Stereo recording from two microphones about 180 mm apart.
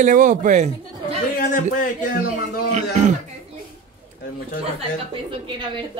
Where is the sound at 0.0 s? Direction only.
45° right (ahead or behind).